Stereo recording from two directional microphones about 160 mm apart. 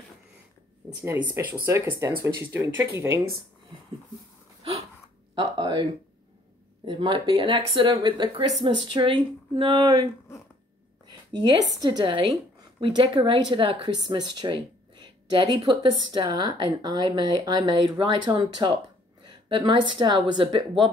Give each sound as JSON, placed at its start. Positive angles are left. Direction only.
{"t": 0.8, "sound": "speech", "side_deg": -15}
{"t": 5.4, "sound": "speech", "side_deg": -30}
{"t": 6.9, "sound": "a woman's voice", "side_deg": -30}